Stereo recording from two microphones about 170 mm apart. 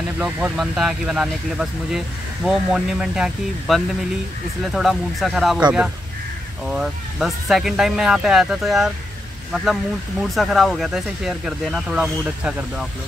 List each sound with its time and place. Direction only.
0.2 s speech: 5° right (ahead or behind)
10.3 s speech: centre (ahead or behind)